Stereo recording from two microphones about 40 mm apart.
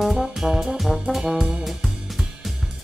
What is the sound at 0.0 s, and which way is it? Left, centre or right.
Brass instrument, centre.